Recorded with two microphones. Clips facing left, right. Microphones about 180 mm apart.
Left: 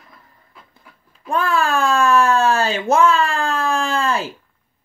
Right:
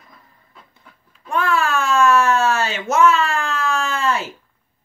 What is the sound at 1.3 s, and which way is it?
Speech, 35° left (ahead or behind).